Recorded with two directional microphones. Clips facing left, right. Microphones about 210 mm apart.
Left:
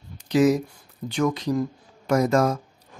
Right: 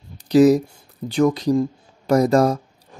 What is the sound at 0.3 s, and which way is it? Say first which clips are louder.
Speech: right 6 dB; 35° right (ahead or behind).